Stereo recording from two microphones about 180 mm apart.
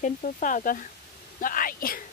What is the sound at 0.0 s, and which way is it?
Speech, 45° left (ahead or behind).